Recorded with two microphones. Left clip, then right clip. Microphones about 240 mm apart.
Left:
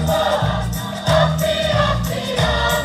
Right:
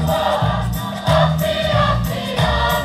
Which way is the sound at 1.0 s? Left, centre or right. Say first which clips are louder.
Even; right.